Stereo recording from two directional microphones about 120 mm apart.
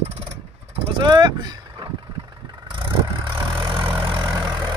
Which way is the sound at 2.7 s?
45° right (ahead or behind).